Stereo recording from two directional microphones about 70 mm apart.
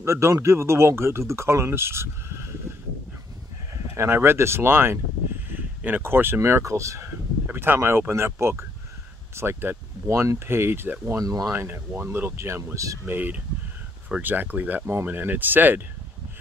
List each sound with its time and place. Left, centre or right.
0.0 s speech: right
3.7 s speech: right
5.8 s a sound: right
6.0 s speech: right
6.6 s speech: right
7.4 s speech: right
11.1 s speech: right
11.5 s speech: right
12.7 s speech: right
13.0 s speech: right